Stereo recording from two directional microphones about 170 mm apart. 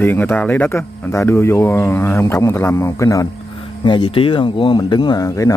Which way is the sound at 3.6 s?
30° left (ahead or behind).